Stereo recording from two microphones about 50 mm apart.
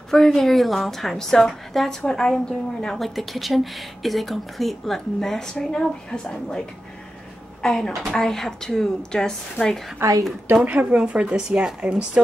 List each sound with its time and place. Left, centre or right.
0.1 s a woman's voice: centre
7.6 s a woman's voice: centre
10.0 s a woman's voice: right
10.5 s speech: right
11.1 s speech: centre